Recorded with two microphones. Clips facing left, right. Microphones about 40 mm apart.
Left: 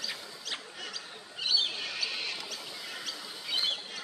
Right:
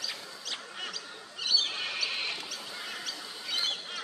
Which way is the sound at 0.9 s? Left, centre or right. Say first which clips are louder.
Right 1 dB; centre.